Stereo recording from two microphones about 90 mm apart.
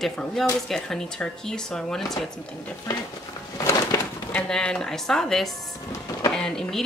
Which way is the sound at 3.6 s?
35° left (ahead or behind).